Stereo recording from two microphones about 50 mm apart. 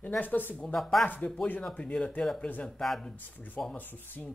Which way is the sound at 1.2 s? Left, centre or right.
Left.